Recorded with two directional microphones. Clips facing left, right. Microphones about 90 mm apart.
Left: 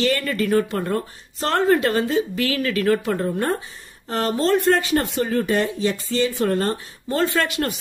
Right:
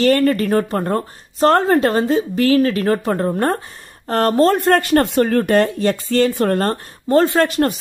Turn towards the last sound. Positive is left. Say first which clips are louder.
# right 6 dB
turn(degrees=-40)  # may be behind; listen again after turning